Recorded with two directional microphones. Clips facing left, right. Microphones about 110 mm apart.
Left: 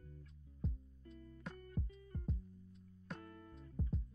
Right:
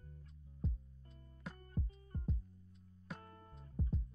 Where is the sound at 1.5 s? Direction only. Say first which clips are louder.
Right 1 dB; 35° right (ahead or behind).